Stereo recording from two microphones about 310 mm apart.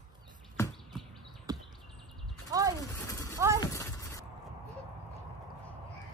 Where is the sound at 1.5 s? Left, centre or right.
Centre.